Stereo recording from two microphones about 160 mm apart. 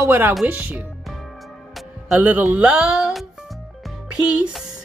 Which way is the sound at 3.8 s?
5° right (ahead or behind).